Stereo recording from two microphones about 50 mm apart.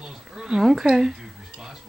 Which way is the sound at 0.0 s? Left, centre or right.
Centre.